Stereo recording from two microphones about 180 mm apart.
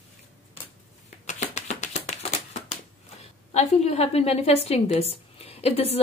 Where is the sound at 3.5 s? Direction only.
35° left (ahead or behind).